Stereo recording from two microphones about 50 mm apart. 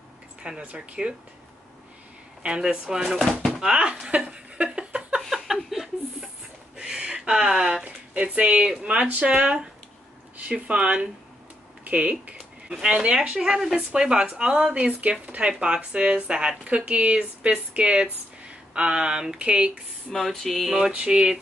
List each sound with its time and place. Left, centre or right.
0.4 s speech: centre
2.4 s speech: centre
4.7 s a sound: centre
5.3 s chuckle: centre
6.8 s a sound: centre
7.8 s speech: right
12.6 s speech: centre
12.9 s speech: right
20.2 s a sound: centre
20.9 s speech: centre